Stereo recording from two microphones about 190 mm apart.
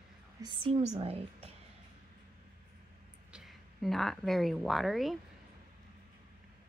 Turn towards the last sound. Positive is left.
turn(degrees=0)  # may be behind; listen again after turning